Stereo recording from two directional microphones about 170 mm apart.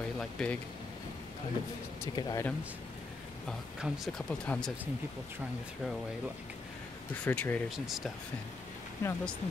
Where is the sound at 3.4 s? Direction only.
Centre (ahead or behind).